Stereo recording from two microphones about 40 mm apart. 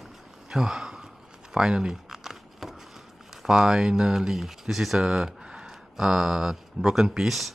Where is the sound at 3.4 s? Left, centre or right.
Centre.